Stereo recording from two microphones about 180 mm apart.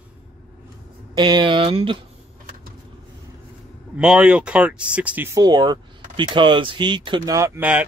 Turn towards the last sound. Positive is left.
turn(degrees=-10)  # may be behind; listen again after turning